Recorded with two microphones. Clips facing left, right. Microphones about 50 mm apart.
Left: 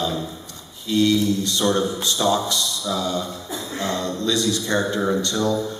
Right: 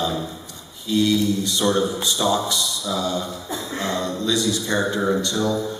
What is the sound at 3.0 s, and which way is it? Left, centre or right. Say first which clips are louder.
A man's voice: even; centre.